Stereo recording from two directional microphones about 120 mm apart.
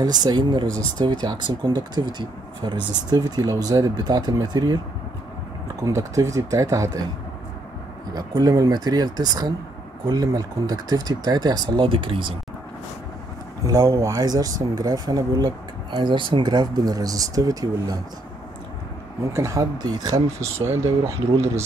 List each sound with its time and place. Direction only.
0.0 s speech: 35° right (ahead or behind)
5.9 s speech: 25° right (ahead or behind)
8.1 s speech: 35° right (ahead or behind)
11.8 s speech: 45° right (ahead or behind)
13.7 s speech: 25° right (ahead or behind)
19.3 s speech: 25° right (ahead or behind)
20.6 s speech: 20° right (ahead or behind)